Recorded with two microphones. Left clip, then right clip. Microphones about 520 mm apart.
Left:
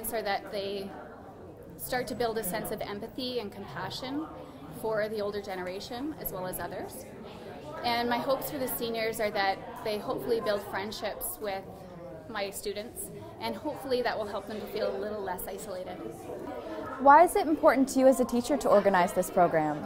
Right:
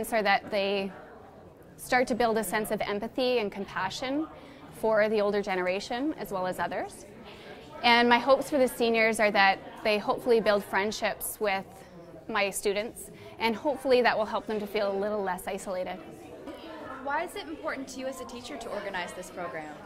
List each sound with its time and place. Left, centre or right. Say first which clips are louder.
0.1 s a woman's voice: right 6 dB; right
1.9 s a woman's voice: right 6 dB; right
4.8 s a woman's voice: right 6 dB; right
17.0 s a woman's voice: left 14 dB; left